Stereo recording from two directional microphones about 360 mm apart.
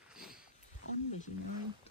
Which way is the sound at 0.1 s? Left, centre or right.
Centre.